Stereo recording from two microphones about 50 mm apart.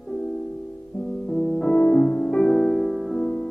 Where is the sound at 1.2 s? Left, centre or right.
Centre.